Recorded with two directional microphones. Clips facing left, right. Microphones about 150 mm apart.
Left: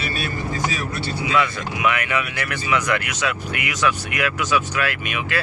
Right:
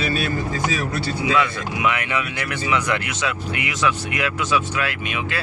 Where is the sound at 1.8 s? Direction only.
25° right (ahead or behind).